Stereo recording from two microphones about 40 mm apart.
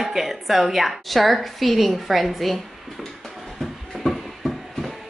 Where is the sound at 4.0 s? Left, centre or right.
Centre.